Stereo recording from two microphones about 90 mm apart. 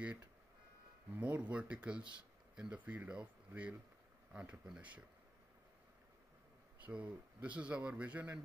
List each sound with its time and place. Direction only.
0.0 s music: 20° right (ahead or behind)
1.1 s speech: 15° right (ahead or behind)
6.8 s speech: 15° right (ahead or behind)